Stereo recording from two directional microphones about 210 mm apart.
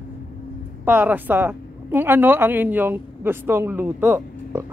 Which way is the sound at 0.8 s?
10° right (ahead or behind).